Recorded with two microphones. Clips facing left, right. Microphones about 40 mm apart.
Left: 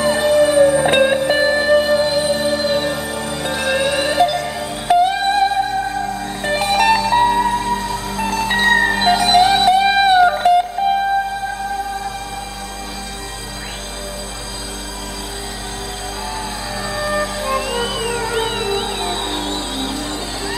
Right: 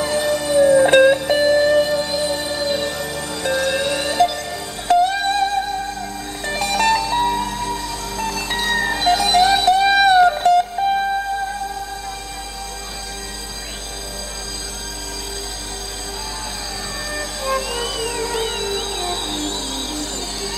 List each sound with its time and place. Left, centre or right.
0.0 s music: centre
16.9 s music: left